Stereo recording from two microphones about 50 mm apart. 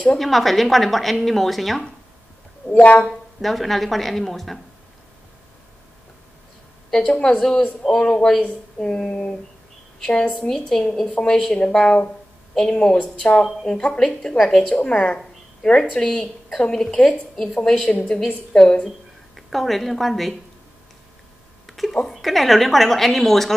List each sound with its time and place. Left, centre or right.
0.2 s a woman's voice: centre
2.8 s speech: left
3.1 s a woman's voice: centre
6.9 s a woman's voice: centre
17.8 s a woman's voice: left
18.9 s speech: centre
21.6 s a woman's voice: centre